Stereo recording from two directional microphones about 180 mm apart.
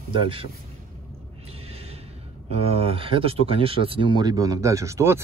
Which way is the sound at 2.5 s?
35° right (ahead or behind).